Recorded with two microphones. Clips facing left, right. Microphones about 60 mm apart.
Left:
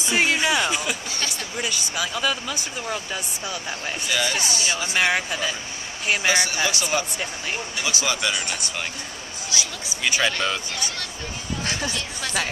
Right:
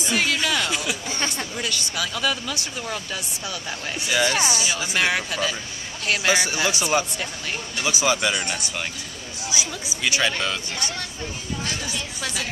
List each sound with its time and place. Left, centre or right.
0.0 s music: left
0.7 s a sound: centre
1.6 s speech: centre
4.5 s speech: centre
4.9 s speech: centre
6.3 s speech: centre
9.5 s speech: centre
10.0 s speech: centre